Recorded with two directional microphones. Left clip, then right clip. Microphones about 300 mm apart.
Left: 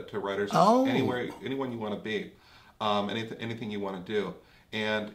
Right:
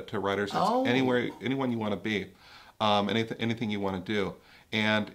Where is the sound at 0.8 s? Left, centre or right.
Right.